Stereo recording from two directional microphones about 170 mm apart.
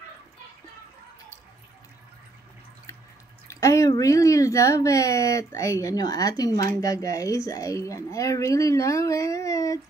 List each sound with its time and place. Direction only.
3.4 s speech: 20° left (ahead or behind)